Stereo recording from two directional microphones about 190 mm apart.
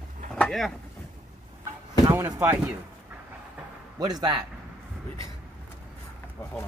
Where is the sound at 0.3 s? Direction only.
5° left (ahead or behind).